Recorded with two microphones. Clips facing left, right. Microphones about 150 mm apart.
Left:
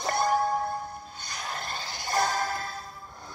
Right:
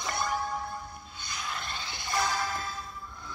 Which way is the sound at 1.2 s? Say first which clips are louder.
Even; 40° left (ahead or behind).